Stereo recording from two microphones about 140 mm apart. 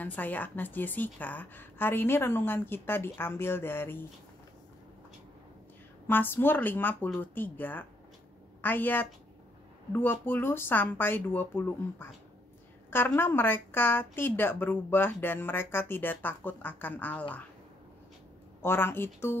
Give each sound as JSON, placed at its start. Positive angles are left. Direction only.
{"t": 0.0, "sound": "a woman's voice", "side_deg": 10}
{"t": 6.0, "sound": "a woman's voice", "side_deg": 15}
{"t": 18.6, "sound": "a woman's voice", "side_deg": 15}